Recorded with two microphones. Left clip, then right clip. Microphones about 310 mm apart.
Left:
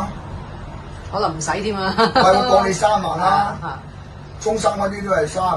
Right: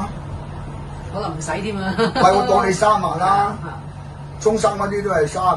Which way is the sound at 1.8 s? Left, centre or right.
Centre.